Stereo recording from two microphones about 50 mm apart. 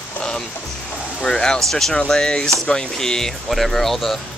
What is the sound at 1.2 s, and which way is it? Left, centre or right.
Speech, centre.